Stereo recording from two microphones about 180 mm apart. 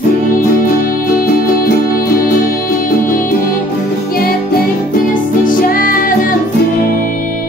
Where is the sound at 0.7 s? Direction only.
55° left (ahead or behind).